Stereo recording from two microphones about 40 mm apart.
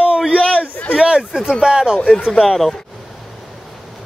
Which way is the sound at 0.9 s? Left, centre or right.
Right.